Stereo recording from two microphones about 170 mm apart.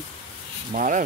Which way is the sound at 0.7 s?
50° right (ahead or behind).